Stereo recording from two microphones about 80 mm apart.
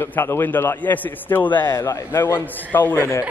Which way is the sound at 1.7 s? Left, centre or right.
Left.